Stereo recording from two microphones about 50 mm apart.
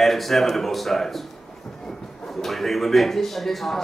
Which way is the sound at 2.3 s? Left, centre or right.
Centre.